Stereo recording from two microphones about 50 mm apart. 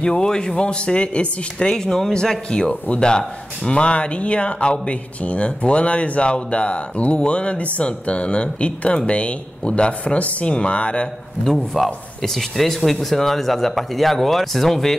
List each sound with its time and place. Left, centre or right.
0.0 s speech: centre
11.4 s speech: centre